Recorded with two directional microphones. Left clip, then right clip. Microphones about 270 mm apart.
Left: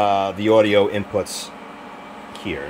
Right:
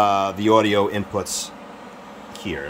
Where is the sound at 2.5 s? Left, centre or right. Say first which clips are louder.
Left 1 dB; centre.